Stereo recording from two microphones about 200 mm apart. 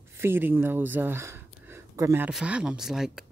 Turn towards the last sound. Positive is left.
turn(degrees=0)  # may be behind; listen again after turning